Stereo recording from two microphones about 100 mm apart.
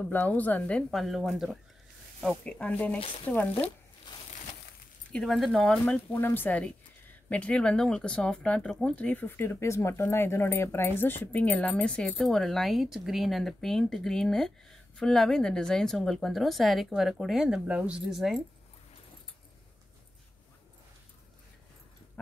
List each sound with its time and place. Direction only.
0.1 s speech: 20° left (ahead or behind)
0.8 s a woman's voice: centre (ahead or behind)
2.4 s speech: 15° left (ahead or behind)
5.1 s a woman's voice: 5° left (ahead or behind)
5.7 s a woman's voice: 15° left (ahead or behind); by 18.4 s 5° right (ahead or behind)